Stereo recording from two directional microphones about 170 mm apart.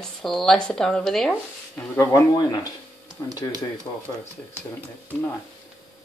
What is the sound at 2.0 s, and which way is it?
Speech, 20° left (ahead or behind).